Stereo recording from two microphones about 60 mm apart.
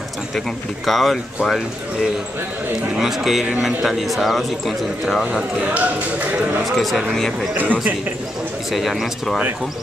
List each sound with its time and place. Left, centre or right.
0.8 s speech: centre
3.0 s speech: centre
5.6 s speech: right
6.6 s speech: centre
7.5 s speech: right
8.6 s speech: centre